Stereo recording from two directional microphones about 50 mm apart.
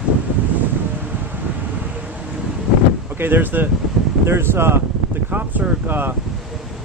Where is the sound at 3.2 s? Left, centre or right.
Right.